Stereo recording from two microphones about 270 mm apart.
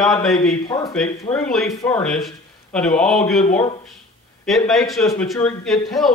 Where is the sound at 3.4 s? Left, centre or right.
Left.